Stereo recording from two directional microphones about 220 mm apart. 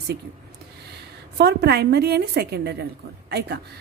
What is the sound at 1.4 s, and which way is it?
A woman's voice, 50° right (ahead or behind).